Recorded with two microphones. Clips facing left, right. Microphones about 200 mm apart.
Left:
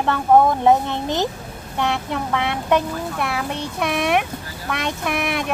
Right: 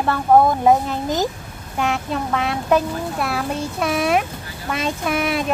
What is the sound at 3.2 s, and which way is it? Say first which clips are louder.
Speech: right 1 dB; centre (ahead or behind).